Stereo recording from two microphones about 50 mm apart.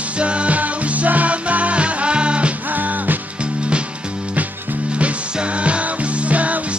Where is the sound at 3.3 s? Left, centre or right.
Right.